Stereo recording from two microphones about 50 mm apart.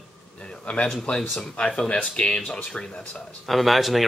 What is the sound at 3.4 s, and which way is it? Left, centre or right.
Speech, centre.